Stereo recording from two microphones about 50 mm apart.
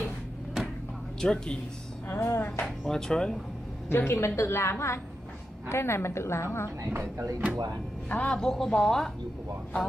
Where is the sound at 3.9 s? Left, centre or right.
Left.